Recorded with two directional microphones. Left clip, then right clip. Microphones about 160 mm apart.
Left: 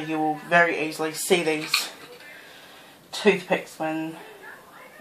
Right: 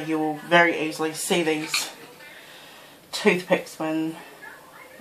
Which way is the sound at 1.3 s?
35° left (ahead or behind).